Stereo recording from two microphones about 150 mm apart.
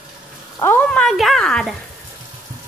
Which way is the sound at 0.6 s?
15° left (ahead or behind).